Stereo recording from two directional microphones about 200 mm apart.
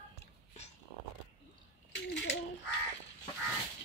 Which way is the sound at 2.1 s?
65° left (ahead or behind).